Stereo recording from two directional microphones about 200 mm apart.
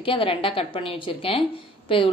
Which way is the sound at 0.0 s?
25° left (ahead or behind).